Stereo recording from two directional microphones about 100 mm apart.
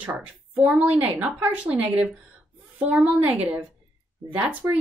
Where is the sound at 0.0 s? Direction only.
15° right (ahead or behind).